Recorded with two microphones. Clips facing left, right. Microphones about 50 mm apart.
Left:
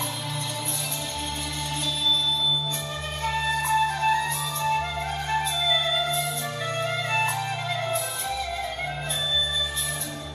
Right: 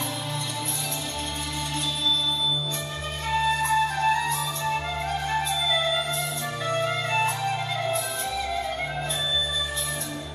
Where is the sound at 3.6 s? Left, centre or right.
Centre.